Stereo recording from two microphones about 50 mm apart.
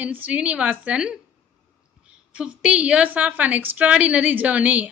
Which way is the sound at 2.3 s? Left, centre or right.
Right.